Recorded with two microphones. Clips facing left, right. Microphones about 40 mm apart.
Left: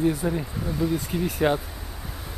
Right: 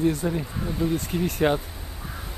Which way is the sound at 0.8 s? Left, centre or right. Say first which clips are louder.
Even; right.